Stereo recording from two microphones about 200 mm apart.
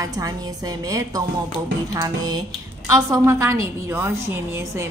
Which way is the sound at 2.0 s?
20° right (ahead or behind).